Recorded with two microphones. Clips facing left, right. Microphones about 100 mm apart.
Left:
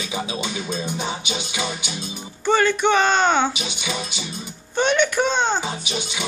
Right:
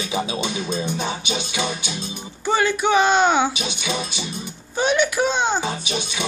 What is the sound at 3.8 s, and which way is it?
Music, 20° right (ahead or behind).